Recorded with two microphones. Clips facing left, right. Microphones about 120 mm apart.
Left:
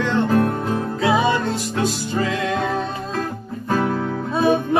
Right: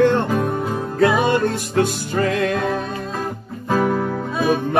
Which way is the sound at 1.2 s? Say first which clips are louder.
Right 1 dB; 55° right (ahead or behind).